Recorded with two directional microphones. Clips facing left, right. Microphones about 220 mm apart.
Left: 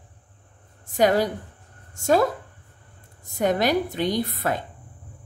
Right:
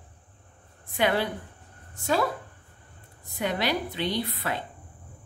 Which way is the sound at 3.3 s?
45° left (ahead or behind).